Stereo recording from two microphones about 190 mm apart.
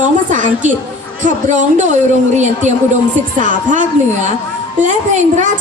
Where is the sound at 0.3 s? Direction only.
40° right (ahead or behind).